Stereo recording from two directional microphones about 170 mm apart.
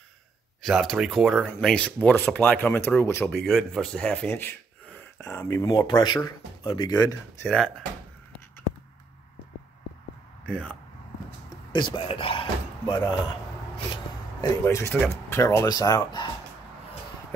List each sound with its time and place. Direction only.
0.6 s speech: centre (ahead or behind)
3.4 s speech: centre (ahead or behind)
10.4 s speech: 5° left (ahead or behind)
11.7 s speech: 30° left (ahead or behind)
14.6 s speech: 15° left (ahead or behind)